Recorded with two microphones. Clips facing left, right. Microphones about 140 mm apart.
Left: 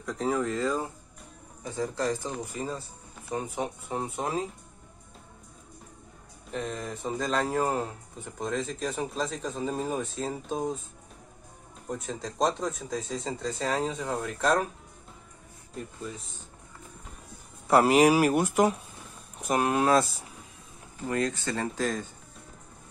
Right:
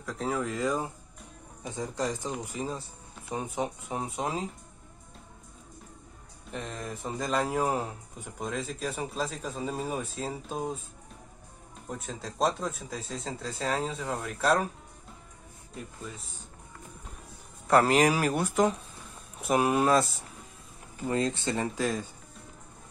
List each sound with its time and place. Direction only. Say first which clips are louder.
0.0 s speech: left 3 dB; centre (ahead or behind)
6.5 s speech: left 3 dB; centre (ahead or behind)
11.9 s speech: left 4 dB; centre (ahead or behind)
17.6 s speech: left 2 dB; 10° left (ahead or behind)
19.3 s speech: right 1 dB; centre (ahead or behind)
21.1 s speech: even; 25° right (ahead or behind)
21.7 s speech: even; 10° right (ahead or behind)